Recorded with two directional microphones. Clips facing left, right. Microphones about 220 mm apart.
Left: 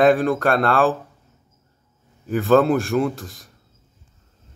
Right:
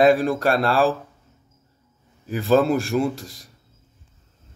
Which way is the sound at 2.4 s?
Centre (ahead or behind).